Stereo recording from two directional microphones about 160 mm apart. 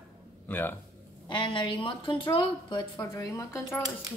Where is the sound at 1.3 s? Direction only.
30° left (ahead or behind).